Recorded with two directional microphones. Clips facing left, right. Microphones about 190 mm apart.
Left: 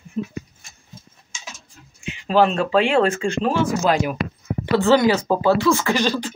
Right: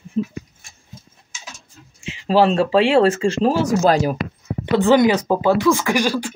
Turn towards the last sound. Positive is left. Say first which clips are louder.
# right 1 dB
turn(degrees=-10)  # may be behind; listen again after turning